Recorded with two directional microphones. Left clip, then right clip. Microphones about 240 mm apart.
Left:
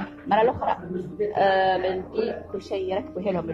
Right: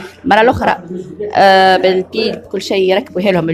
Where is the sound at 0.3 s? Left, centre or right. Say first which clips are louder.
Right 11 dB; right.